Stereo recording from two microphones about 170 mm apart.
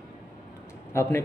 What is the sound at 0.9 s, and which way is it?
Speech, 15° left (ahead or behind).